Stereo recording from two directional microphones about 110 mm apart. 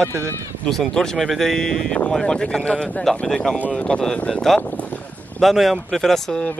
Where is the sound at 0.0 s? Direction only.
25° right (ahead or behind).